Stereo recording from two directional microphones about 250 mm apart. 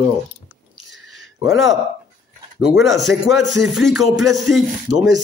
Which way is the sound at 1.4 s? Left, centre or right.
Centre.